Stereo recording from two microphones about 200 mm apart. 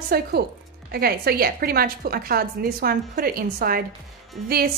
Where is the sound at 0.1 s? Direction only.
50° right (ahead or behind).